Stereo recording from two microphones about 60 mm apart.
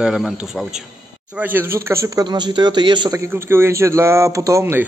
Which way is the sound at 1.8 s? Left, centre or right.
Right.